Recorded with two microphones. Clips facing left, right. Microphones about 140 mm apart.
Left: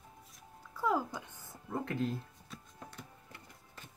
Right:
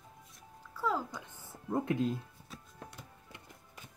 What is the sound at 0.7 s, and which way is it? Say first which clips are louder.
Music: left 2 dB; 15° left (ahead or behind).